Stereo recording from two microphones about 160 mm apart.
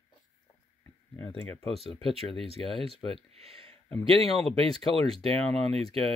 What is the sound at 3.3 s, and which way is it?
Speech, 40° right (ahead or behind).